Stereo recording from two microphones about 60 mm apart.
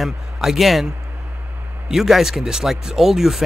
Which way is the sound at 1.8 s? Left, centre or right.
Centre.